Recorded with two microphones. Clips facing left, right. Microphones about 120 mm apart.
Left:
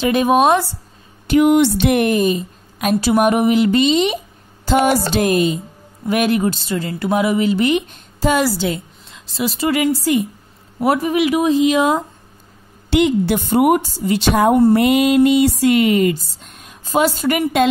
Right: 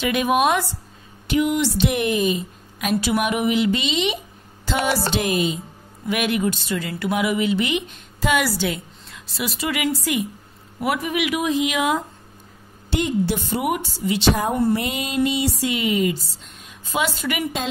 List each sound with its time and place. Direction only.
0.0 s speech: 35° left (ahead or behind)
1.4 s a woman's voice: 60° left (ahead or behind)
6.0 s speech: 40° left (ahead or behind)
12.9 s a woman's voice: 65° left (ahead or behind); by 14.2 s 45° left (ahead or behind)
14.3 s speech: 65° left (ahead or behind)
14.7 s a sound: 65° left (ahead or behind)
15.6 s a woman's voice: 55° left (ahead or behind); by 17.5 s 40° left (ahead or behind)